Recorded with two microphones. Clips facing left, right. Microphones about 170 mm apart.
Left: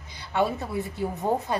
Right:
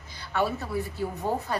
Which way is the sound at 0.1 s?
20° left (ahead or behind).